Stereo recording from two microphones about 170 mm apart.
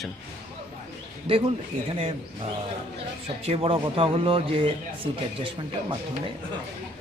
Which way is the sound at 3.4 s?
35° right (ahead or behind).